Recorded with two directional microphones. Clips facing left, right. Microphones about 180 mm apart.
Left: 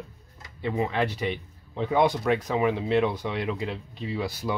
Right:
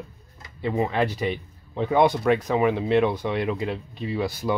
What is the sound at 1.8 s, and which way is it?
Speech, 55° right (ahead or behind).